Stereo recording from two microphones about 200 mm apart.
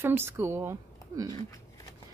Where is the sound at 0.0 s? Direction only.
10° right (ahead or behind).